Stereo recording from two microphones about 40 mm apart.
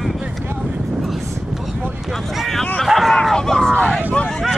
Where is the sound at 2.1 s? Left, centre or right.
Centre.